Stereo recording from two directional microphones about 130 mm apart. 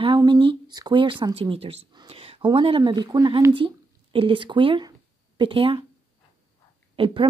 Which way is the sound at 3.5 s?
45° right (ahead or behind).